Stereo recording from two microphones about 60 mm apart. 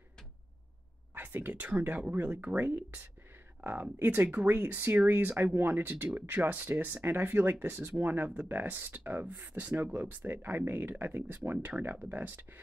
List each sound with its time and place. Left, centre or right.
1.1 s speech: right
3.6 s a sound: right
4.0 s speech: right